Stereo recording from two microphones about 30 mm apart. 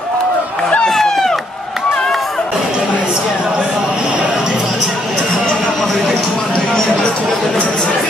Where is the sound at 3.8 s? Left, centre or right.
Right.